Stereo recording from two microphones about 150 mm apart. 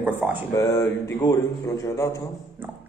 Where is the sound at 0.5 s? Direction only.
20° left (ahead or behind).